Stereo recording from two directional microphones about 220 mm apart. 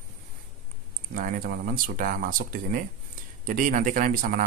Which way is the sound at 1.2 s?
40° right (ahead or behind).